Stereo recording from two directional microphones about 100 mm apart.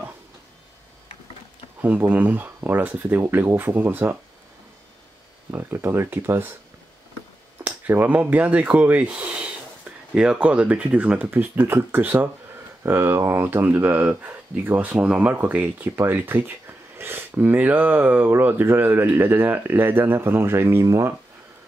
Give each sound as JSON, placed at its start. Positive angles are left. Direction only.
{"t": 1.8, "sound": "speech", "side_deg": -15}
{"t": 5.5, "sound": "speech", "side_deg": -25}
{"t": 7.6, "sound": "speech", "side_deg": -15}